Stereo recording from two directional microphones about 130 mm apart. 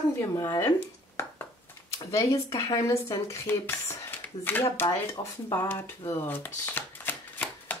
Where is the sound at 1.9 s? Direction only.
25° left (ahead or behind).